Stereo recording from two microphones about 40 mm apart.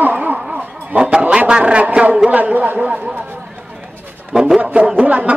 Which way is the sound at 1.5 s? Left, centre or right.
Right.